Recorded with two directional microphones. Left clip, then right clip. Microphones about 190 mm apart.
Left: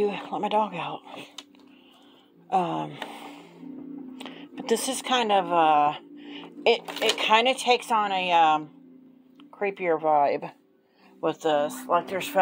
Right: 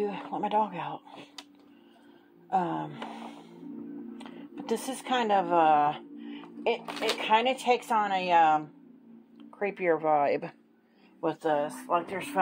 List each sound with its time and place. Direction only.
0.0 s speech: 30° left (ahead or behind)
2.5 s a sound: 30° left (ahead or behind)
4.2 s speech: 35° left (ahead or behind); by 6.0 s 10° left (ahead or behind)
6.1 s a sound: 30° left (ahead or behind)
7.2 s speech: 25° left (ahead or behind); by 10.5 s centre (ahead or behind)
11.1 s speech: 25° left (ahead or behind)
11.9 s speech: 55° left (ahead or behind)